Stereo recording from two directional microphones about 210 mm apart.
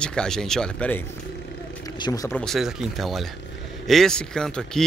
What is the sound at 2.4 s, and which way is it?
Speech, centre (ahead or behind).